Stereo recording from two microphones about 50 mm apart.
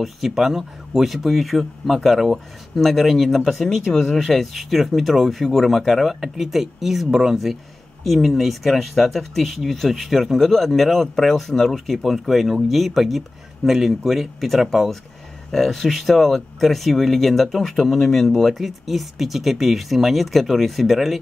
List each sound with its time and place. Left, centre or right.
0.0 s speech: centre